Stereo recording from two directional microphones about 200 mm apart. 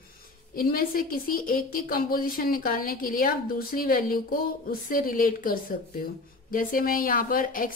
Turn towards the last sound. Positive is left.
turn(degrees=45)  # may be behind; listen again after turning